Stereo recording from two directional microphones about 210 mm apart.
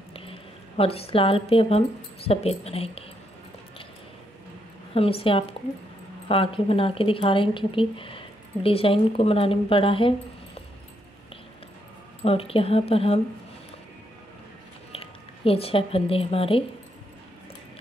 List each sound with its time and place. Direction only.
0.1 s a woman's voice: 25° left (ahead or behind)
4.9 s a woman's voice: 25° left (ahead or behind)
12.2 s a woman's voice: 25° left (ahead or behind)
14.9 s speech: 25° left (ahead or behind)